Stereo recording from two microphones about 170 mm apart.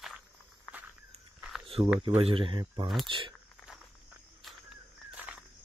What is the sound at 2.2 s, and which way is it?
Speech, 35° right (ahead or behind).